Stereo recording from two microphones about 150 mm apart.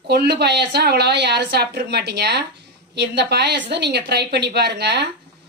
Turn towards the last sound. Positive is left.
turn(degrees=-90)